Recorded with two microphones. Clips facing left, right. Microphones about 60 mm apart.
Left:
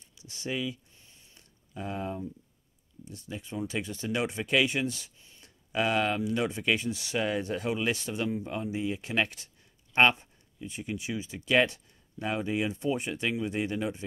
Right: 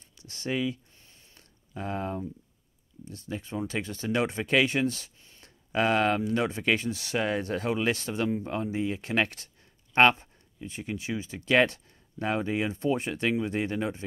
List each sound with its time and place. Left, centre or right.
0.3 s speech: right
1.8 s speech: right
7.2 s speech: right
7.4 s speech: right